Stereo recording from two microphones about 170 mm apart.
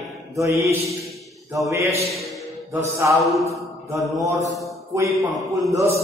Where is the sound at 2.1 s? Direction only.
Centre (ahead or behind).